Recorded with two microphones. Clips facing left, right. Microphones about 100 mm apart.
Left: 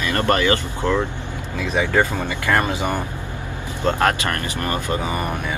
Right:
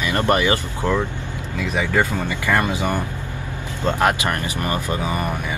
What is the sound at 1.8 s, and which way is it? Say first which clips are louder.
Speech: left 1 dB; 15° left (ahead or behind).